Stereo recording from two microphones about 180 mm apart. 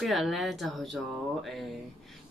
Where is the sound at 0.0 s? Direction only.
Centre (ahead or behind).